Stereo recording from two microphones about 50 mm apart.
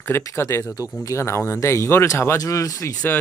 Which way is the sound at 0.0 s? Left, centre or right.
Left.